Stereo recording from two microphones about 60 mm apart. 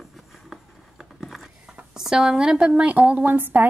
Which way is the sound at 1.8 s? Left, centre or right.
Centre.